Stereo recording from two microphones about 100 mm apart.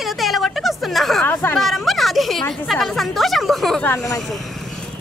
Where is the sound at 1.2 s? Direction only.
20° left (ahead or behind).